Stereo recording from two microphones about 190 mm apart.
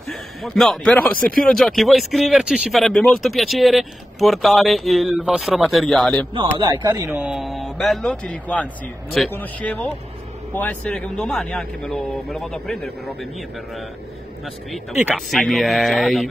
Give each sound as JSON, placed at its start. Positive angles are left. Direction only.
{"t": 0.1, "sound": "speech", "side_deg": 0}
{"t": 6.7, "sound": "speech", "side_deg": -20}
{"t": 7.2, "sound": "a man's voice", "side_deg": -5}
{"t": 14.4, "sound": "speech", "side_deg": 0}